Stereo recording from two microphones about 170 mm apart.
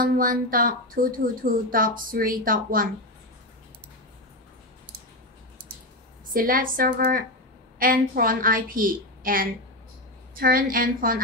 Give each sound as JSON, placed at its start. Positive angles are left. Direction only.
{"t": 0.0, "sound": "speech", "side_deg": -55}
{"t": 6.3, "sound": "speech", "side_deg": -55}